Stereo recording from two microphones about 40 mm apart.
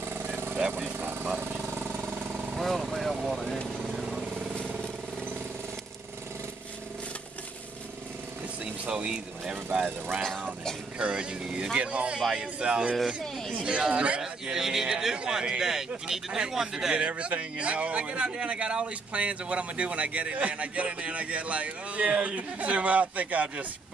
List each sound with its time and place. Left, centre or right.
0.7 s speech: right
2.6 s speech: centre
3.9 s vehicle: centre
8.9 s speech: centre
11.0 s a man's voice: right
14.2 s speech: centre
16.9 s speech: right